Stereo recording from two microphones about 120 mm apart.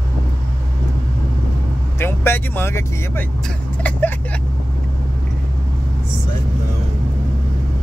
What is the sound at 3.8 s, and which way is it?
Vehicle, 15° left (ahead or behind).